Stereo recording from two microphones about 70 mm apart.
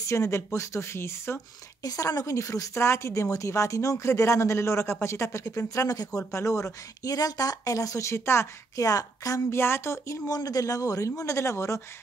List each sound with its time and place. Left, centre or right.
0.0 s speech: left
1.8 s speech: left
8.8 s speech: left
9.5 s speech: left
10.2 s speech: left